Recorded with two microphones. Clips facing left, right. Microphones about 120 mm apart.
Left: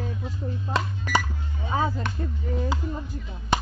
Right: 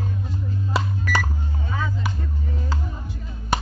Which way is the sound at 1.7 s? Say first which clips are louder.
Left 4 dB; 40° left (ahead or behind).